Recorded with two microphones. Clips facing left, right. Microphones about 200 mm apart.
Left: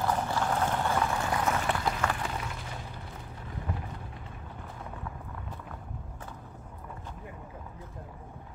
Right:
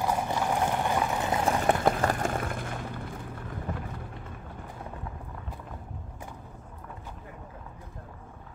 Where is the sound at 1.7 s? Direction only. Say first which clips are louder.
Right 6 dB; 50° right (ahead or behind).